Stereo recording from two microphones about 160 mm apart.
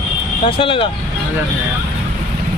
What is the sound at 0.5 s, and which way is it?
Speech, 35° left (ahead or behind).